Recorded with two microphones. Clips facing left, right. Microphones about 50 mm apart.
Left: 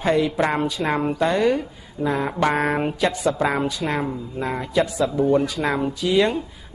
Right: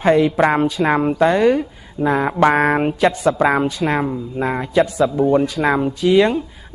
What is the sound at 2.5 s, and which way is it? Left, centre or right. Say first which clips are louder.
Speech: right 6 dB; right.